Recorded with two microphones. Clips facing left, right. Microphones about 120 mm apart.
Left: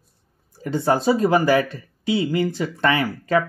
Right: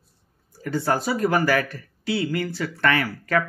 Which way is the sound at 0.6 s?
20° left (ahead or behind).